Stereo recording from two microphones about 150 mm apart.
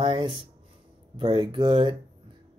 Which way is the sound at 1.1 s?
30° right (ahead or behind).